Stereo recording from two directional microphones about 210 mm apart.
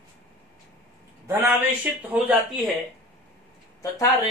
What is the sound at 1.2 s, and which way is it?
Speech, 10° right (ahead or behind).